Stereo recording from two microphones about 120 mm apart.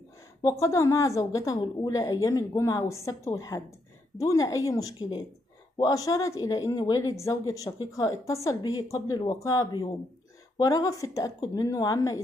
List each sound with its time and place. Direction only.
0.4 s speech: 30° left (ahead or behind)